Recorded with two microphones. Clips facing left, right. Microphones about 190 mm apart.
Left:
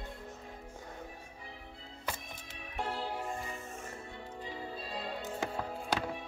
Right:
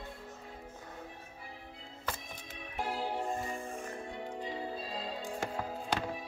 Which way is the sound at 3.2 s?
35° right (ahead or behind).